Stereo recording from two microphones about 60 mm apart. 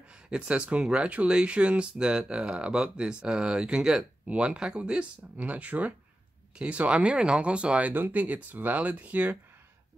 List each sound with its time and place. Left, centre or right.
0.1 s speech: centre
7.9 s speech: right